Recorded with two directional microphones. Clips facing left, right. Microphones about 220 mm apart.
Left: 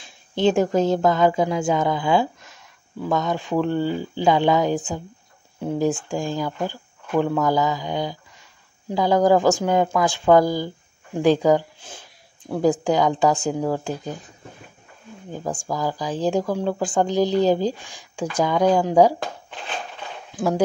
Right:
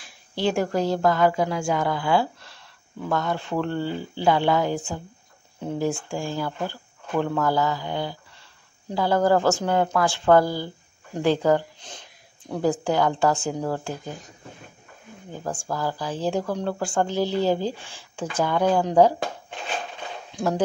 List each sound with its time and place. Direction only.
0.0 s speech: 20° left (ahead or behind)
15.4 s speech: 15° left (ahead or behind)
20.3 s speech: 10° left (ahead or behind)